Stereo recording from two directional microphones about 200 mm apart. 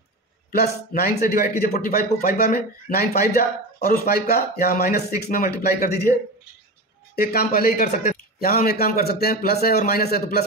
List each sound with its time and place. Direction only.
0.5 s speech: 50° left (ahead or behind)
7.2 s speech: 50° left (ahead or behind)